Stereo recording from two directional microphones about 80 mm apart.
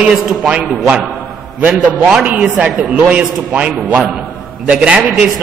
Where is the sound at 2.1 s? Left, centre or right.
Centre.